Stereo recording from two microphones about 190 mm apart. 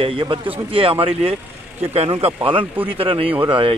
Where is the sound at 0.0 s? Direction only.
30° right (ahead or behind).